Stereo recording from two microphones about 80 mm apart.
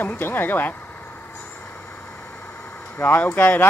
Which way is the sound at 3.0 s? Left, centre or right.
Left.